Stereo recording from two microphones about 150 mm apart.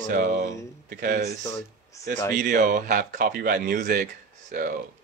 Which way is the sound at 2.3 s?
60° right (ahead or behind).